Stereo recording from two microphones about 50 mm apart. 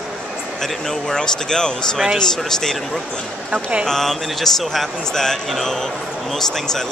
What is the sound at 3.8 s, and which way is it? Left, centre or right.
Speech, centre.